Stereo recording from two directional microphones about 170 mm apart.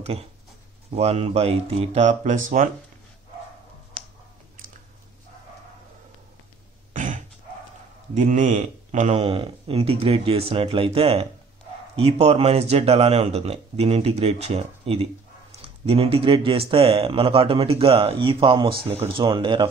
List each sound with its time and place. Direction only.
0.9 s speech: 35° right (ahead or behind)
6.9 s a sound: 50° right (ahead or behind)
8.1 s speech: 45° right (ahead or behind); by 19.7 s 30° right (ahead or behind)